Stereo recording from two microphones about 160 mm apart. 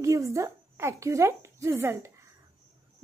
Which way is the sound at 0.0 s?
20° right (ahead or behind).